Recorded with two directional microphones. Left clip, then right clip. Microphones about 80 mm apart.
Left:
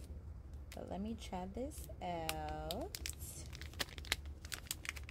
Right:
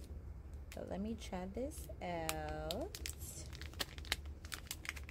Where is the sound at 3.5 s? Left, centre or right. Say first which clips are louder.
Left 1 dB; left.